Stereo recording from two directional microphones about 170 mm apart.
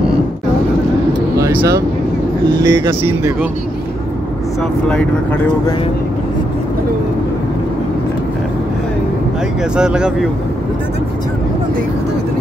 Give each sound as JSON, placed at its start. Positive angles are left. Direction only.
{"t": 1.4, "sound": "vehicle", "side_deg": -15}
{"t": 2.6, "sound": "speech", "side_deg": -15}
{"t": 4.8, "sound": "speech", "side_deg": 5}
{"t": 9.8, "sound": "speech", "side_deg": -5}